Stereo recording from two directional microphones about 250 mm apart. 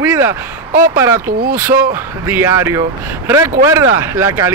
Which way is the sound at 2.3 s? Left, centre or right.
Centre.